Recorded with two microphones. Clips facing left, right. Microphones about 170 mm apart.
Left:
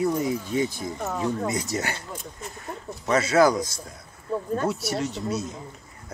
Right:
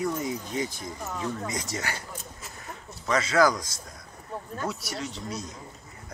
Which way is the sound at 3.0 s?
25° left (ahead or behind).